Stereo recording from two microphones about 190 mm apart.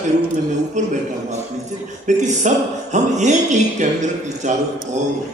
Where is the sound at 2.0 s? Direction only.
40° right (ahead or behind).